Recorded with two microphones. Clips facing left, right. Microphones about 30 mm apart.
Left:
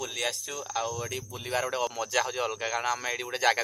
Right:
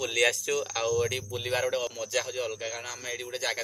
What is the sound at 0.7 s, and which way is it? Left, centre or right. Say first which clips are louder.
Speech: right 1 dB; right.